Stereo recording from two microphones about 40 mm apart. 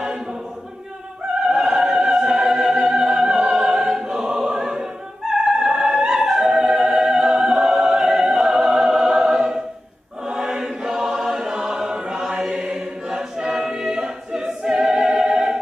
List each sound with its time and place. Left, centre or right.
0.0 s choir: centre
1.5 s opera: centre
10.2 s choir: centre